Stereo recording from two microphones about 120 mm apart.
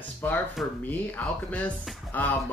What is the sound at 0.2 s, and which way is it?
Speech, 15° left (ahead or behind).